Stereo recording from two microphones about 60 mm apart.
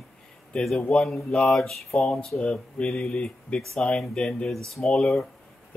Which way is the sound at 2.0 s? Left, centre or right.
Centre.